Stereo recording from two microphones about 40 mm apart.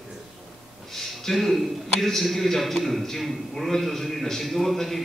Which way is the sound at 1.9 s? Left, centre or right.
Centre.